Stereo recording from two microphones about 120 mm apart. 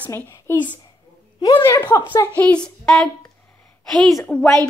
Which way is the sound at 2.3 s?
10° left (ahead or behind).